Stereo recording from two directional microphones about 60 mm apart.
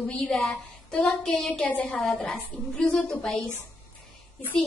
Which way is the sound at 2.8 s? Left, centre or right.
Centre.